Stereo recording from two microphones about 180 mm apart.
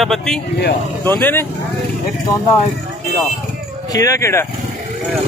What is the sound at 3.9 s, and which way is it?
Speech, 20° left (ahead or behind).